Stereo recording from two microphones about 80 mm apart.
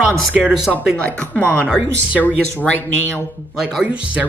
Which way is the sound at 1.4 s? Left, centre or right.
Centre.